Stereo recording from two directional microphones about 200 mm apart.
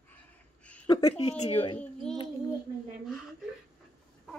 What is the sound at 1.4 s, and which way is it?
Speech, 30° left (ahead or behind).